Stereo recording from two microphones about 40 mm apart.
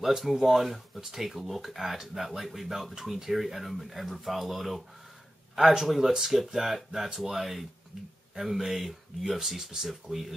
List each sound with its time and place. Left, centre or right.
0.0 s speech: centre